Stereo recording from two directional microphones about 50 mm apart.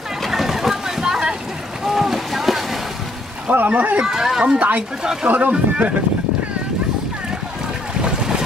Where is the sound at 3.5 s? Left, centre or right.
Right.